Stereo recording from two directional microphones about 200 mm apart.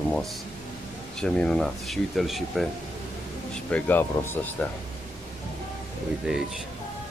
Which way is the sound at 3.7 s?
5° left (ahead or behind).